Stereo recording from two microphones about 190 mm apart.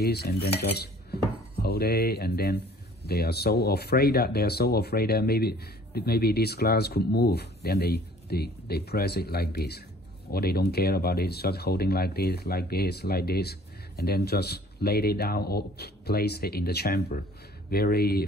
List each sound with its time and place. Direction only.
0.0 s cutlery: 55° left (ahead or behind)
17.6 s speech: 55° left (ahead or behind)